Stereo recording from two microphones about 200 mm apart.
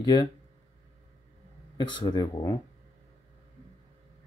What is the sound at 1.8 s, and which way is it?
Speech, 20° left (ahead or behind).